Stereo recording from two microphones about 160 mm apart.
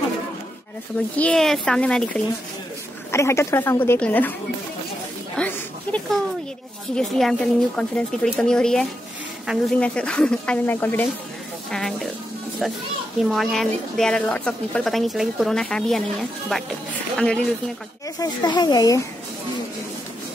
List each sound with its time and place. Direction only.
1.1 s a woman's voice: 5° left (ahead or behind)
3.1 s speech: 15° left (ahead or behind)
5.3 s a sound: 10° left (ahead or behind)
7.0 s a woman's voice: 5° left (ahead or behind)
11.7 s a woman's voice: centre (ahead or behind)
13.2 s a woman's voice: centre (ahead or behind)
18.2 s speech: 25° left (ahead or behind)